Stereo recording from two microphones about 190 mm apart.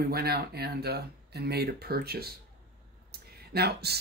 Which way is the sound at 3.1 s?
55° right (ahead or behind).